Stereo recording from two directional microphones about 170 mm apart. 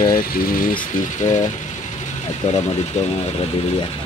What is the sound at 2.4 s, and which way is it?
Speech, 40° left (ahead or behind).